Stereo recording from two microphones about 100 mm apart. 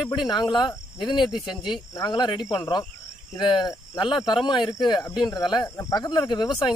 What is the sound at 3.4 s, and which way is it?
Speech, 50° left (ahead or behind).